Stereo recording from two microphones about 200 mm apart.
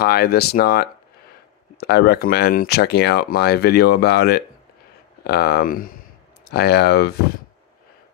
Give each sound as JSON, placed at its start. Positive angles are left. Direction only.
{"t": 0.0, "sound": "speech", "side_deg": 50}